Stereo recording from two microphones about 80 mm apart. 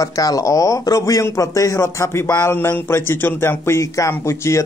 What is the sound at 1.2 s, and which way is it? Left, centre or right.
Speech, left.